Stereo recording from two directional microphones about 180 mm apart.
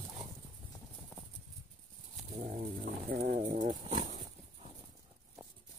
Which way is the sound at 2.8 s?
60° right (ahead or behind).